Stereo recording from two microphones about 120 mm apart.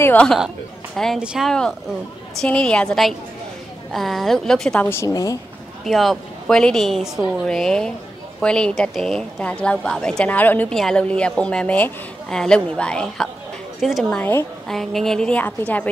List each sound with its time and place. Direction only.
0.0 s a woman's voice: 15° left (ahead or behind)
0.9 s a woman's voice: 5° left (ahead or behind)
1.2 s speech: 10° right (ahead or behind)
1.5 s a woman's voice: 5° left (ahead or behind)
4.8 s a woman's voice: 25° left (ahead or behind)
5.9 s a woman's voice: centre (ahead or behind)
10.7 s a woman's voice: 5° left (ahead or behind)